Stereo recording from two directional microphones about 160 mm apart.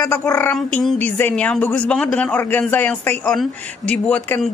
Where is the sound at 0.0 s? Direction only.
15° left (ahead or behind).